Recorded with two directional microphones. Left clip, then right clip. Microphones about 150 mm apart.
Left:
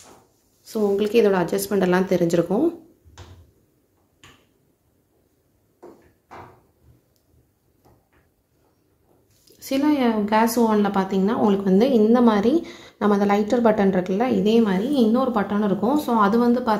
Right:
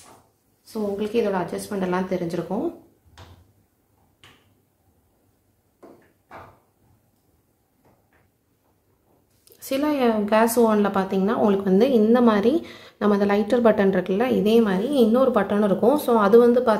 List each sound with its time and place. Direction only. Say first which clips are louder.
0.7 s a woman's voice: left 6 dB; 40° left (ahead or behind)
9.4 s speech: left 1 dB; 10° right (ahead or behind)